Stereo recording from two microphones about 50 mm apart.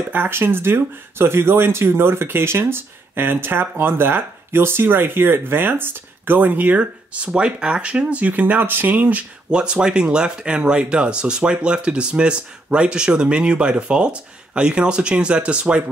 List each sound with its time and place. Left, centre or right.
0.1 s speech: right
0.4 s speech: right
9.5 s speech: centre